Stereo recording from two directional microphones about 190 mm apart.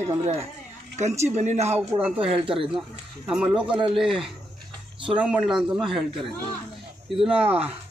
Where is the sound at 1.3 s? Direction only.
35° right (ahead or behind).